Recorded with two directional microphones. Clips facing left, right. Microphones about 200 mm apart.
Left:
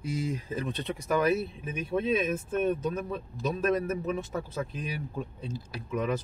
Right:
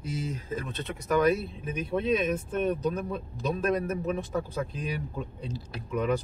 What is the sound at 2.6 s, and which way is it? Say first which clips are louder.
A man's voice: right 3 dB; 5° left (ahead or behind).